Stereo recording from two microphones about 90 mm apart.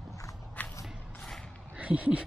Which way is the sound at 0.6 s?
15° left (ahead or behind).